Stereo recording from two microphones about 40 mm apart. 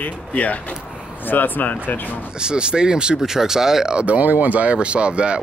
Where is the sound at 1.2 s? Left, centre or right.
Left.